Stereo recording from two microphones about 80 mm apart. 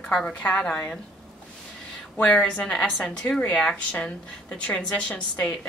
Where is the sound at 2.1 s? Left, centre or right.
Centre.